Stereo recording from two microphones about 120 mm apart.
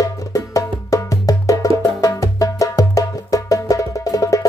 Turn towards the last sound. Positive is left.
turn(degrees=30)  # may be behind; listen again after turning